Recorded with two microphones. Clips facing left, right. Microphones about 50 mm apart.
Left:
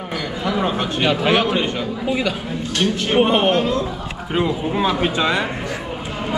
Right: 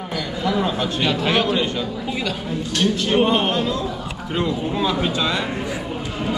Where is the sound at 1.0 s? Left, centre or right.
Centre.